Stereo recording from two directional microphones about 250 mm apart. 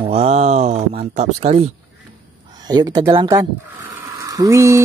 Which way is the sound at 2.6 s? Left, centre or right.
Centre.